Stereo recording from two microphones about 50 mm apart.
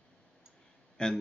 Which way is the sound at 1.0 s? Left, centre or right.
Centre.